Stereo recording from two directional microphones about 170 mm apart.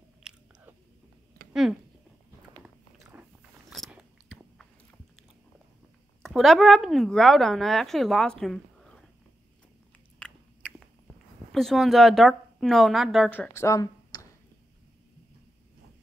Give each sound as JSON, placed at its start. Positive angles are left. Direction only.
{"t": 0.2, "sound": "biting", "side_deg": -5}
{"t": 1.5, "sound": "speech", "side_deg": -5}
{"t": 2.6, "sound": "biting", "side_deg": -5}
{"t": 3.7, "sound": "chewing", "side_deg": 0}
{"t": 6.2, "sound": "speech", "side_deg": 0}
{"t": 10.1, "sound": "biting", "side_deg": 5}
{"t": 11.5, "sound": "speech", "side_deg": 0}
{"t": 13.3, "sound": "speech", "side_deg": 10}